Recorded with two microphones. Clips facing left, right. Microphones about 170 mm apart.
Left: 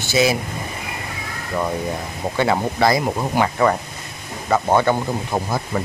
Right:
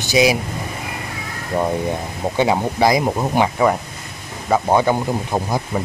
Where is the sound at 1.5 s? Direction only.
25° right (ahead or behind).